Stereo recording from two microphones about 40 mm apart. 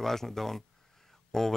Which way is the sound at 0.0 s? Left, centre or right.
Centre.